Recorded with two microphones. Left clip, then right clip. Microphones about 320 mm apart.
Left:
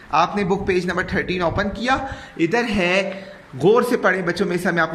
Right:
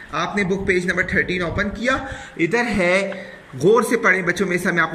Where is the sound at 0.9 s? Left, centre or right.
Left.